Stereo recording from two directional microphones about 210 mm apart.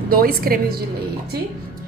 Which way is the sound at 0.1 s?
45° right (ahead or behind).